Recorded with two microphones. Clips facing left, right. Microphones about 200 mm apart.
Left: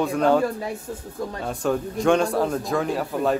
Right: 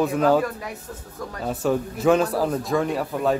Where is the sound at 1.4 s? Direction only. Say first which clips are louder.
Right 2 dB; 5° right (ahead or behind).